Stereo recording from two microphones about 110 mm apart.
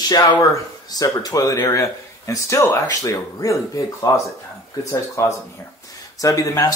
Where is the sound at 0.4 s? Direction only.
30° left (ahead or behind).